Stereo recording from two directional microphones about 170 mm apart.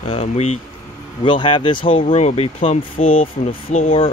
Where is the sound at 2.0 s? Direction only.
40° left (ahead or behind).